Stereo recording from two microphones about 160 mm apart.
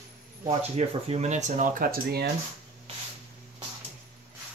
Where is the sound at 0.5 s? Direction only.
40° right (ahead or behind); by 2.2 s 70° right (ahead or behind).